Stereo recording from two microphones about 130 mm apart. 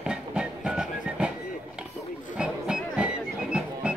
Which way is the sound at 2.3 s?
5° right (ahead or behind).